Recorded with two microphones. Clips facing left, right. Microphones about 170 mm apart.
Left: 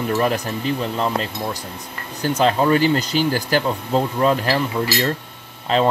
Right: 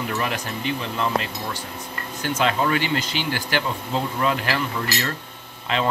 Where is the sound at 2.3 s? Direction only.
35° left (ahead or behind).